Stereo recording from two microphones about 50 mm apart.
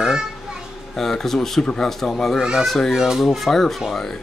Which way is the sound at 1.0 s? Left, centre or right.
Centre.